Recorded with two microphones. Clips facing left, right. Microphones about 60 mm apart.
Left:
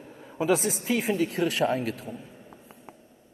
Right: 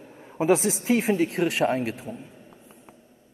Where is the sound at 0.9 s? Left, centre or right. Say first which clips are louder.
Right 4 dB; right.